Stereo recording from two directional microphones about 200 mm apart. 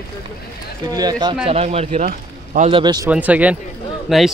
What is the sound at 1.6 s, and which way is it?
A man's voice, 30° right (ahead or behind).